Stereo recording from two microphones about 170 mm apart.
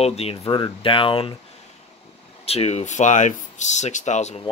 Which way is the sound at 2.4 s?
35° left (ahead or behind).